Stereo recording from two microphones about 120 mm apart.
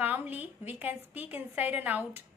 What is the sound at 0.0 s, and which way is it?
Speech, 15° right (ahead or behind).